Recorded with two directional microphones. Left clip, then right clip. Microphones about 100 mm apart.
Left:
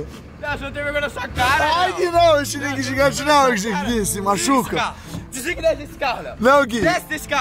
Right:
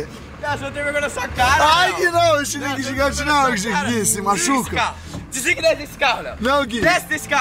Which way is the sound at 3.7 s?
5° left (ahead or behind).